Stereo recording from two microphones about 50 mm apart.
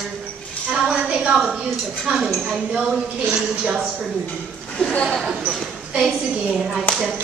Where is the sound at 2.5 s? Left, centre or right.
Centre.